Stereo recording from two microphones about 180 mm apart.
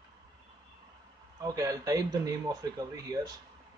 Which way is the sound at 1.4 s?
20° right (ahead or behind).